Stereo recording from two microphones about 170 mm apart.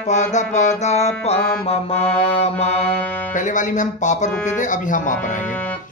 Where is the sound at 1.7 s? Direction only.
35° left (ahead or behind).